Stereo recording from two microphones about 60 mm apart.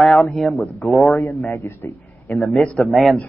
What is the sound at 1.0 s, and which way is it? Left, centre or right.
A man's voice, left.